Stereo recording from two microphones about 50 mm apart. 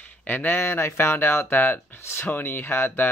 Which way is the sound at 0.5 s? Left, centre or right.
Left.